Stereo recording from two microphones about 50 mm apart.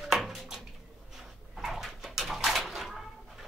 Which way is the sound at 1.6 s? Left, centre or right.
Centre.